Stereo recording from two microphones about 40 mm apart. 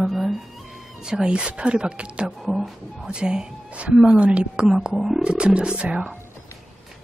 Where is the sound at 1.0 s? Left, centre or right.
Centre.